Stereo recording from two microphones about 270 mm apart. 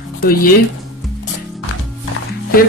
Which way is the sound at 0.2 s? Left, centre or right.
Left.